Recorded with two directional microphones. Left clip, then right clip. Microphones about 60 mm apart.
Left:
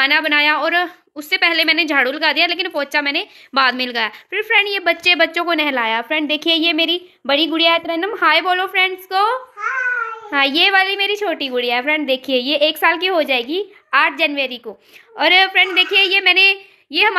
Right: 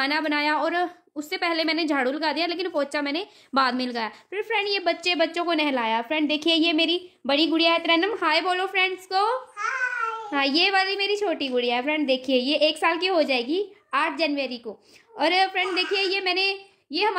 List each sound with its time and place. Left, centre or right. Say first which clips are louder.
0.0 s a woman's voice: left 10 dB; right
3.7 s a woman's voice: left 8 dB; right
6.5 s speech: left 6 dB; right
7.2 s a woman's voice: left 6 dB; right
7.8 s a woman's voice: even; right
8.1 s a woman's voice: left 8 dB; right
15.7 s a woman's voice: left 10 dB; right
16.3 s a woman's voice: left 12 dB; centre